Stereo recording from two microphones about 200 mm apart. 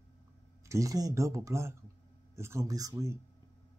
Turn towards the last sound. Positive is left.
turn(degrees=-15)  # may be behind; listen again after turning